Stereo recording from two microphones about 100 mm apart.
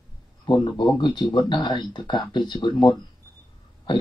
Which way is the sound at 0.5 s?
50° left (ahead or behind).